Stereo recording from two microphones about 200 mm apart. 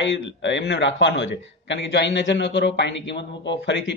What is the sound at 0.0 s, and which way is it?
A man's voice, 65° left (ahead or behind).